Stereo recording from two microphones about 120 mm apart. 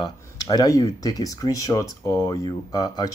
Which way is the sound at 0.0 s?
30° left (ahead or behind).